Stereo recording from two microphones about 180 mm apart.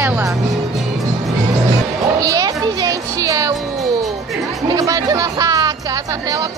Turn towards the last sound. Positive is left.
turn(degrees=-20)  # may be behind; listen again after turning